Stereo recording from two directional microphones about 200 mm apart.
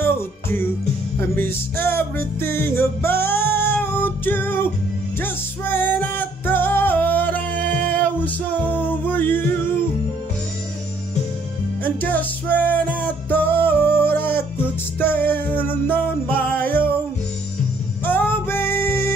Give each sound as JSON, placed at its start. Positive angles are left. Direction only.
{"t": 0.0, "sound": "music", "side_deg": 10}
{"t": 11.8, "sound": "music", "side_deg": 10}
{"t": 18.0, "sound": "music", "side_deg": 10}